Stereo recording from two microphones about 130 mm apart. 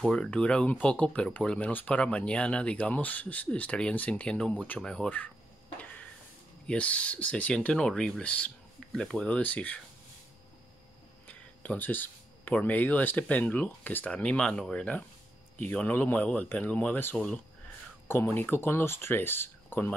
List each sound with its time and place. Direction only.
0.1 s speech: 5° left (ahead or behind)
6.7 s speech: 10° left (ahead or behind)
11.2 s speech: 10° left (ahead or behind)